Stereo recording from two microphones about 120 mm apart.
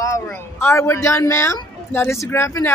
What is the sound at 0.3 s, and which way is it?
Speech, 20° left (ahead or behind).